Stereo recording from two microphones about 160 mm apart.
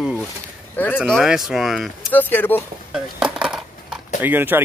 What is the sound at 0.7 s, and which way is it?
Speech, 10° left (ahead or behind).